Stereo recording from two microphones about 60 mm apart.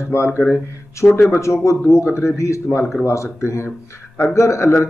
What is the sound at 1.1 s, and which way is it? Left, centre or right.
A man's voice, left.